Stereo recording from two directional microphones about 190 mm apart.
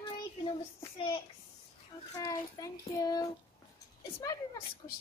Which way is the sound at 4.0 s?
20° left (ahead or behind).